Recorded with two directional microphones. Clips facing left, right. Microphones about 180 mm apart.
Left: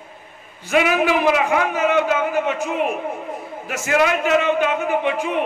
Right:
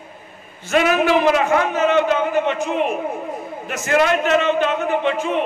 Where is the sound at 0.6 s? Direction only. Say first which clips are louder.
Right 1 dB; 10° left (ahead or behind).